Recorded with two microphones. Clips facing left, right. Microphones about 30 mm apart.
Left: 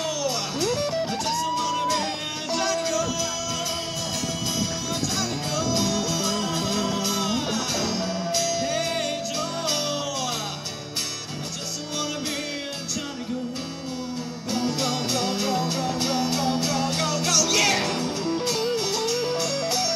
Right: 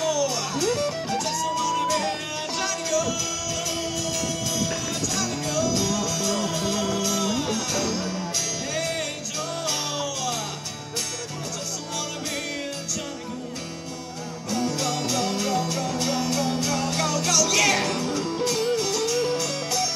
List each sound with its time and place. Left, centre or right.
0.0 s music: left
1.1 s music: left
1.8 s music: centre
5.1 s music: left
14.5 s music: left